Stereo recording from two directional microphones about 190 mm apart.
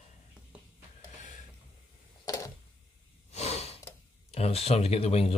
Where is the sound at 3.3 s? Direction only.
35° left (ahead or behind).